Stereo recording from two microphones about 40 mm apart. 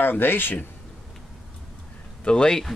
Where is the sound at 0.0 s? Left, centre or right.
Left.